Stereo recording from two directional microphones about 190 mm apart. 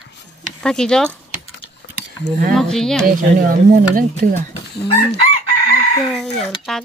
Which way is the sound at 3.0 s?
45° right (ahead or behind).